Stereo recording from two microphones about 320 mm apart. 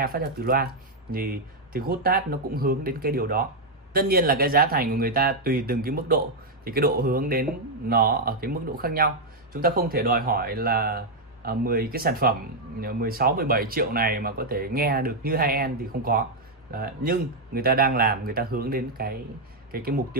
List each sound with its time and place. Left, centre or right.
0.0 s speech: right